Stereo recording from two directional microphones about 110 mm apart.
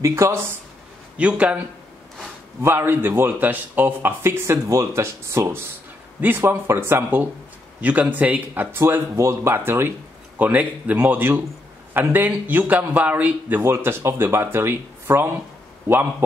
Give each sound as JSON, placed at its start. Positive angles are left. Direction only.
{"t": 0.0, "sound": "a man's voice", "side_deg": -25}
{"t": 1.1, "sound": "speech", "side_deg": -10}
{"t": 2.6, "sound": "a man's voice", "side_deg": -20}